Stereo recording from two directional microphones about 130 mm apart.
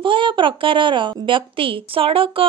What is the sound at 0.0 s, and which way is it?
A woman's voice, 40° right (ahead or behind).